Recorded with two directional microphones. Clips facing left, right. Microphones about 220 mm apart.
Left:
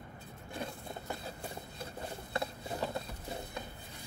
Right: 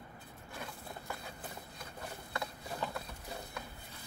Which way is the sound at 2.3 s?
25° left (ahead or behind).